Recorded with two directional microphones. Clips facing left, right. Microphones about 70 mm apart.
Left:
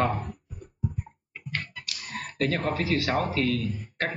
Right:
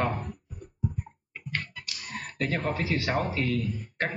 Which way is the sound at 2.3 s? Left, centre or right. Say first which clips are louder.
Left 2 dB; centre.